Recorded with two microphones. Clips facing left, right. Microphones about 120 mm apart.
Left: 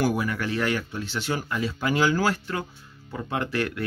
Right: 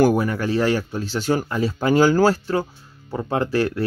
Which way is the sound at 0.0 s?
40° right (ahead or behind).